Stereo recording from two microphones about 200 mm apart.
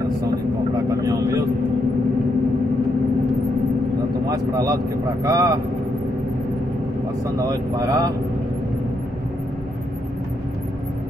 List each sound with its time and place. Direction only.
4.3 s speech: 20° right (ahead or behind)
7.3 s speech: 15° right (ahead or behind)